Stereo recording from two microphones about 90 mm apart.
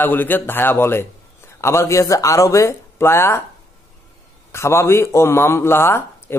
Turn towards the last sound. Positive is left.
turn(degrees=30)  # may be behind; listen again after turning